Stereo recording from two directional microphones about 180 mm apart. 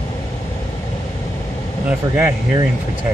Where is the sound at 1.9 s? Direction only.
10° right (ahead or behind).